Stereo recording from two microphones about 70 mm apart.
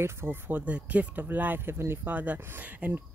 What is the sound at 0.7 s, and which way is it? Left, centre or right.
Speech, centre.